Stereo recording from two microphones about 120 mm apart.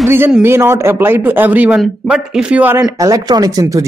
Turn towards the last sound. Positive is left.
turn(degrees=-25)  # may be behind; listen again after turning